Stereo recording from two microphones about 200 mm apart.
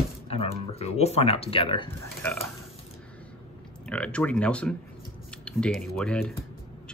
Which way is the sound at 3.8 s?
5° left (ahead or behind).